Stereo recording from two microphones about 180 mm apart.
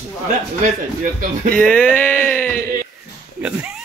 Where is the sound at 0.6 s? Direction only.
45° right (ahead or behind).